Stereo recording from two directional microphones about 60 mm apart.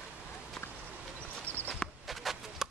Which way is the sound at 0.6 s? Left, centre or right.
Left.